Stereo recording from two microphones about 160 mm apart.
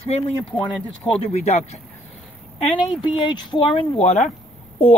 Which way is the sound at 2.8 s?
30° left (ahead or behind).